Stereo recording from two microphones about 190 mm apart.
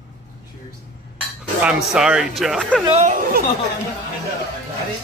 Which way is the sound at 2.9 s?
35° right (ahead or behind).